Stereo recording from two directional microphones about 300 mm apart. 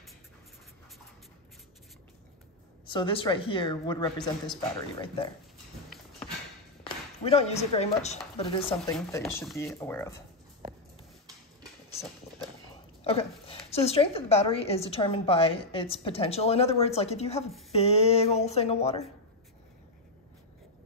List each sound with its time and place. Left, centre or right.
2.9 s a woman's voice: centre
6.8 s a woman's voice: centre
8.9 s a woman's voice: centre
13.0 s a woman's voice: centre
17.5 s speech: centre
17.7 s a woman's voice: centre